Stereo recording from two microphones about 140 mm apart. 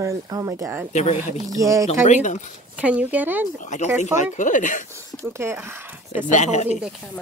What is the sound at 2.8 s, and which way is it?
Speech, 10° right (ahead or behind).